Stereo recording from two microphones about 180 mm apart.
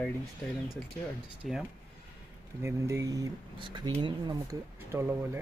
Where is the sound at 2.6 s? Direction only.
15° right (ahead or behind).